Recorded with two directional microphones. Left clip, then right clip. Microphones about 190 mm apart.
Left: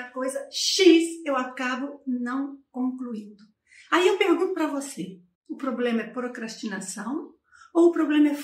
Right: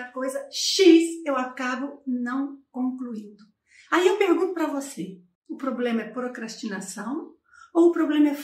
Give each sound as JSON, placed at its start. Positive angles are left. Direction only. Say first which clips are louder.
{"t": 0.0, "sound": "a woman's voice", "louder": "even", "side_deg": 0}